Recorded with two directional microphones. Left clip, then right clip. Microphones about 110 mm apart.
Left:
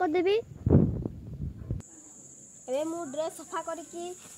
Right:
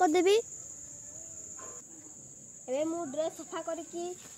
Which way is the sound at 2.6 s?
15° left (ahead or behind).